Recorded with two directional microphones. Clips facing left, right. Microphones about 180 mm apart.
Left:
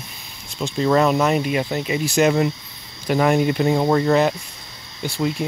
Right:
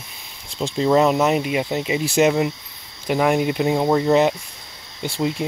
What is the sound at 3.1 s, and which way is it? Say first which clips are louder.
Speech: left 1 dB; 15° right (ahead or behind).